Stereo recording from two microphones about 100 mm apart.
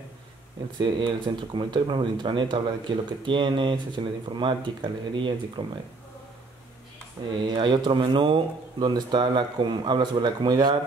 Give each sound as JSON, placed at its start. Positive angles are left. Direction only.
{"t": 0.7, "sound": "speech", "side_deg": -55}
{"t": 7.3, "sound": "speech", "side_deg": -55}